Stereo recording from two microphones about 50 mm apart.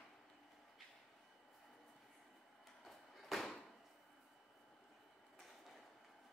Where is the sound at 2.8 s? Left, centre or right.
Centre.